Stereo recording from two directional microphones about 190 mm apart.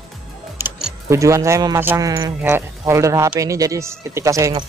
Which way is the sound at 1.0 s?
15° right (ahead or behind).